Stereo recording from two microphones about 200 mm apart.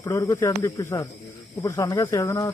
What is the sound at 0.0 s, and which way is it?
Speech, 15° left (ahead or behind).